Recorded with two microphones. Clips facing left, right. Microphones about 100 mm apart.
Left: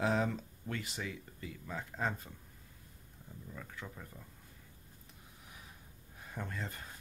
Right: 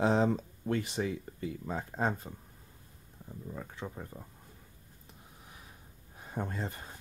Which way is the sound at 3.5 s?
30° right (ahead or behind).